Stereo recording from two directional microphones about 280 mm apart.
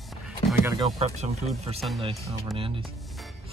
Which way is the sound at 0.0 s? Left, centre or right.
Centre.